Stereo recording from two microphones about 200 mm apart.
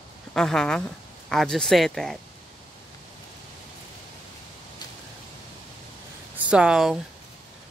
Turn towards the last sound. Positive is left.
turn(degrees=-5)  # may be behind; listen again after turning